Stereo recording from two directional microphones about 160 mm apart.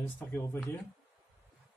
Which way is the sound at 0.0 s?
10° left (ahead or behind).